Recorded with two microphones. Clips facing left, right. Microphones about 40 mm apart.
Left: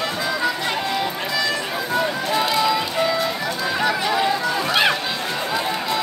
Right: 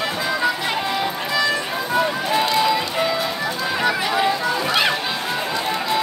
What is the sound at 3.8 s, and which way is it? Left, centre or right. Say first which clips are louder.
Run: right 1 dB; centre.